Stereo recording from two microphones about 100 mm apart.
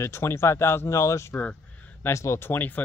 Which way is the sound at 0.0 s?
25° left (ahead or behind).